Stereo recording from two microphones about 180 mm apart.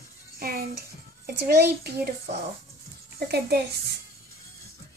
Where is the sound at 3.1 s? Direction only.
65° right (ahead or behind).